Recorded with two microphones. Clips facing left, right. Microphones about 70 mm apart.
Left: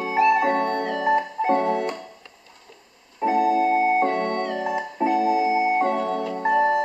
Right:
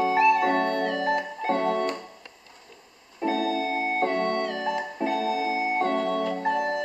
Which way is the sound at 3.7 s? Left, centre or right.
Centre.